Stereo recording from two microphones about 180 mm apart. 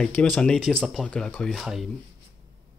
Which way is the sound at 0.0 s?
5° left (ahead or behind).